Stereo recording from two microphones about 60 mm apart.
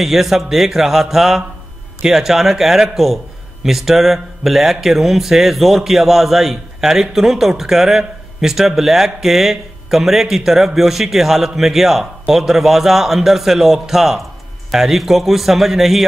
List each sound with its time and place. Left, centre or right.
0.0 s speech: centre